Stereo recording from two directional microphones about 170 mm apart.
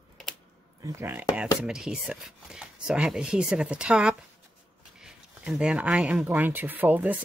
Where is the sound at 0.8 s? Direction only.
15° right (ahead or behind).